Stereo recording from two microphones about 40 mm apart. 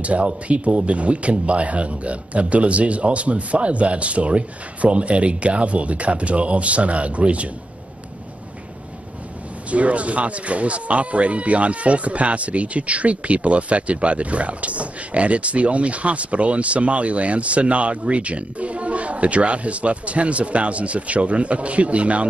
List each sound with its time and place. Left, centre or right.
0.0 s speech: right
9.7 s speech: right